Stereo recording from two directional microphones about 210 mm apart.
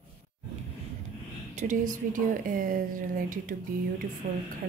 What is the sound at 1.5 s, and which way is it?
A woman's voice, 40° right (ahead or behind).